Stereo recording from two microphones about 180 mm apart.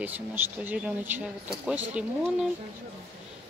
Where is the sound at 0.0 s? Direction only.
10° right (ahead or behind).